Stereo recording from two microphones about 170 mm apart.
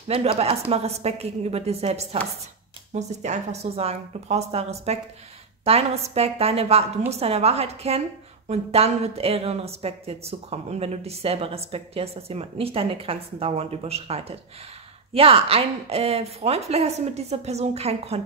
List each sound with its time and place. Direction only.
0.1 s speech: 35° right (ahead or behind)